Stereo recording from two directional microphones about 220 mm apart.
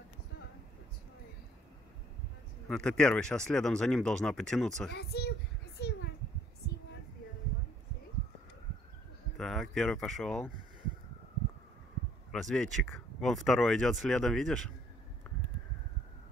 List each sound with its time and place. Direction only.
2.7 s speech: 5° left (ahead or behind)
4.9 s speech: 45° left (ahead or behind)
5.8 s a sound: 50° left (ahead or behind)
9.4 s speech: centre (ahead or behind)
12.3 s speech: centre (ahead or behind)